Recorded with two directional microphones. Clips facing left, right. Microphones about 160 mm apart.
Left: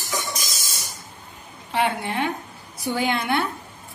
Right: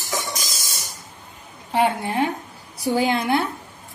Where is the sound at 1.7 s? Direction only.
40° right (ahead or behind).